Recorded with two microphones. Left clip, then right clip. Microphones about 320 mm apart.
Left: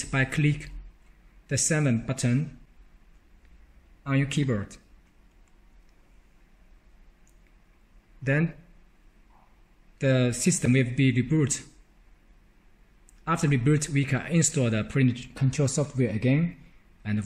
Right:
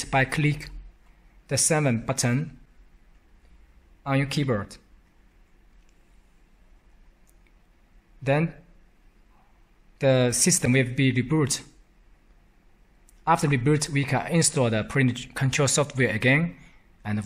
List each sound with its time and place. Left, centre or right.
0.0 s speech: centre
4.0 s speech: centre
8.2 s speech: centre
9.9 s speech: centre
13.2 s speech: centre